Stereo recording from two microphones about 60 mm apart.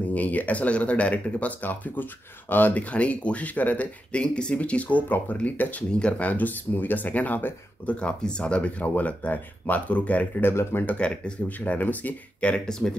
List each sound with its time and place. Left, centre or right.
0.1 s speech: left
10.8 s speech: left